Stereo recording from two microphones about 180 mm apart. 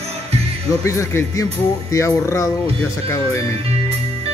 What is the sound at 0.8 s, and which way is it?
Speech, 15° left (ahead or behind).